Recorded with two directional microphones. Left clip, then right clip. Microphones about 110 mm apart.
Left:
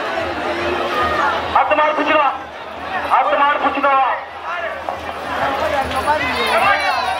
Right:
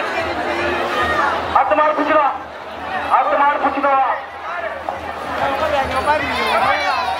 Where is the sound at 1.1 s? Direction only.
Centre (ahead or behind).